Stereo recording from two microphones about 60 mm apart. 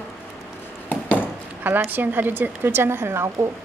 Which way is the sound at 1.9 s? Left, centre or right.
Right.